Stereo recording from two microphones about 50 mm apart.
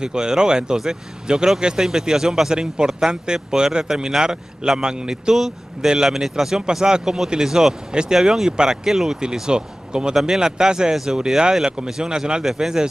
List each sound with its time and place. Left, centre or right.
0.0 s a man's voice: centre
8.5 s a man's voice: centre